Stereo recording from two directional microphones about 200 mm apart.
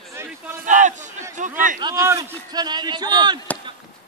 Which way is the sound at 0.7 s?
40° right (ahead or behind).